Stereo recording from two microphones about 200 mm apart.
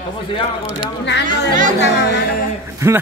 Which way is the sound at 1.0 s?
60° left (ahead or behind).